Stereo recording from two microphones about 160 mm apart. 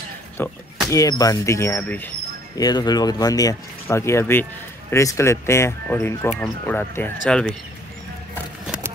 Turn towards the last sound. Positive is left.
turn(degrees=5)  # may be behind; listen again after turning